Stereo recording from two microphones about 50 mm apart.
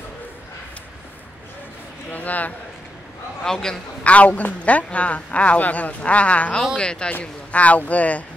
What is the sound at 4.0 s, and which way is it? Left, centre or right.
A man's voice, left.